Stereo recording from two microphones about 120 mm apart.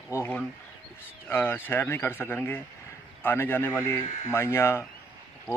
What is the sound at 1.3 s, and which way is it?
Speech, 15° left (ahead or behind).